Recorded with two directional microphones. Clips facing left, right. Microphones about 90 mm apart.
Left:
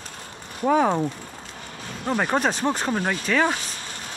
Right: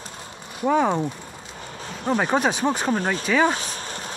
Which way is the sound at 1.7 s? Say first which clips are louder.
Right 2 dB; 25° right (ahead or behind).